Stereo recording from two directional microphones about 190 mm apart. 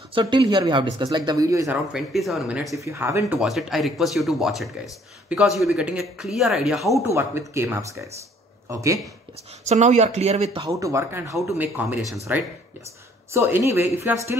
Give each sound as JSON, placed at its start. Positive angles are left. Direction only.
{"t": 0.1, "sound": "speech", "side_deg": -25}
{"t": 1.9, "sound": "speech", "side_deg": 0}
{"t": 2.8, "sound": "speech", "side_deg": -15}
{"t": 3.3, "sound": "speech", "side_deg": 0}
{"t": 6.9, "sound": "speech", "side_deg": -15}
{"t": 9.7, "sound": "speech", "side_deg": -35}
{"t": 10.6, "sound": "speech", "side_deg": -15}
{"t": 13.3, "sound": "speech", "side_deg": -15}